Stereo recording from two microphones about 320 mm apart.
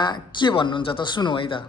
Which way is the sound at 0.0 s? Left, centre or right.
Centre.